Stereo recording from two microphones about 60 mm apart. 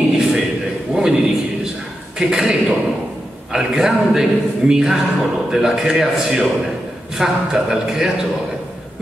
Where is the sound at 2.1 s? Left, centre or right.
Centre.